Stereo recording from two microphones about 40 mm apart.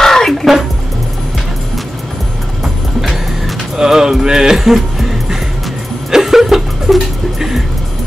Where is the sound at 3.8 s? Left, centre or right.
Centre.